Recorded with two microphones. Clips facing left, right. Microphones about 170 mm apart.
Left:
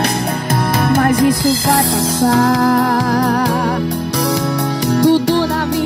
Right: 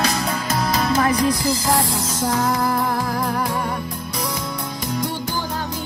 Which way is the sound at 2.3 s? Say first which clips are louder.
Left 7 dB; 90° left.